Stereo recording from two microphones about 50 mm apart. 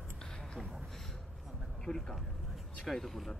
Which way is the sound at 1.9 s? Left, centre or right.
Centre.